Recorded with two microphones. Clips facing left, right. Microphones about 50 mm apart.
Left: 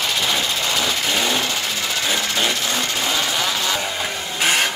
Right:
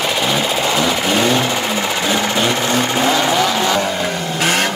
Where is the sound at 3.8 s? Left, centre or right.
Centre.